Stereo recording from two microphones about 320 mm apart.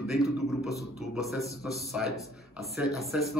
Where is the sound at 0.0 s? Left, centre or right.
Centre.